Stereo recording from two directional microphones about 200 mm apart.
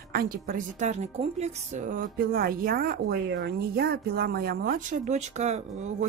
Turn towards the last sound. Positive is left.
turn(degrees=-35)  # may be behind; listen again after turning